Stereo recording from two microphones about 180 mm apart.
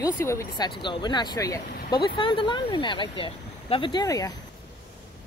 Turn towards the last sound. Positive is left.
turn(degrees=20)  # may be behind; listen again after turning